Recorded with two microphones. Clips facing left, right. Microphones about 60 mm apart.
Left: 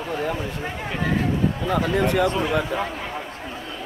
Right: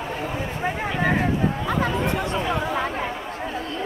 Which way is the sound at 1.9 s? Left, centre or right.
Left.